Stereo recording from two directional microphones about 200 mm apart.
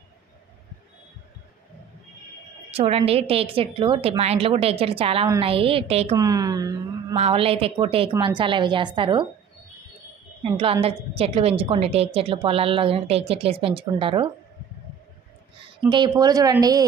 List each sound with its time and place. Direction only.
2.7 s a woman's voice: 30° right (ahead or behind)
6.1 s speech: 20° right (ahead or behind)
7.2 s a woman's voice: 30° right (ahead or behind)
10.4 s a woman's voice: 25° right (ahead or behind)
15.9 s a woman's voice: 20° right (ahead or behind)